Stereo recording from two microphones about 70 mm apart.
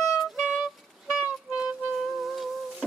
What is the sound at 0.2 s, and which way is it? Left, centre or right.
Music, centre.